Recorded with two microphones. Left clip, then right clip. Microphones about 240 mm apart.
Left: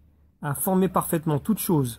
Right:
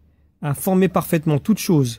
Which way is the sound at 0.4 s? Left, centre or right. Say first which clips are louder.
Right 5 dB; right.